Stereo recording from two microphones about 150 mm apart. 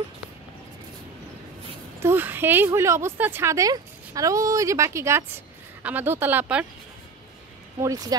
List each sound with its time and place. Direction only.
2.0 s speech: 15° right (ahead or behind)
7.8 s speech: 25° right (ahead or behind)